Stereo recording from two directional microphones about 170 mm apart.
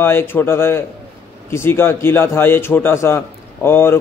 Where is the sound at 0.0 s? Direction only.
15° left (ahead or behind).